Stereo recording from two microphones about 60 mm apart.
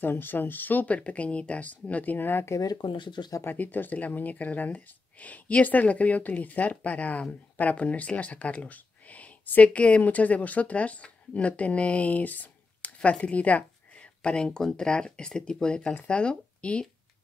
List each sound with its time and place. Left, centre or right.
0.0 s speech: left
2.5 s speech: left
3.4 s speech: left